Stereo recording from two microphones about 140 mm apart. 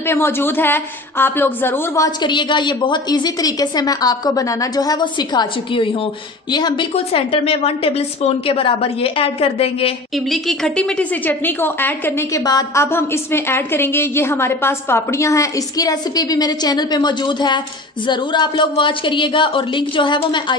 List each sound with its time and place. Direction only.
0.1 s a woman's voice: 15° left (ahead or behind)
2.0 s a woman's voice: 35° left (ahead or behind)
7.1 s a woman's voice: 40° left (ahead or behind)
10.1 s a woman's voice: centre (ahead or behind)
12.4 s a woman's voice: 25° left (ahead or behind)